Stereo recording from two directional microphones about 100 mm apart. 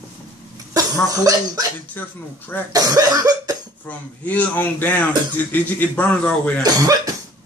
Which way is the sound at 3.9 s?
15° left (ahead or behind).